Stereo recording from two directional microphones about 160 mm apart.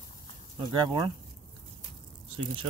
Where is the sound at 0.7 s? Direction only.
30° right (ahead or behind).